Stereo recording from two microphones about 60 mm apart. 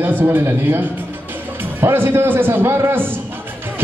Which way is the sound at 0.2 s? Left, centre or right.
Right.